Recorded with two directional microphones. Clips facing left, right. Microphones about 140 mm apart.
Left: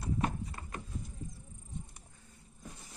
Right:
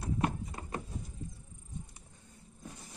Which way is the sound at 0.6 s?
15° right (ahead or behind).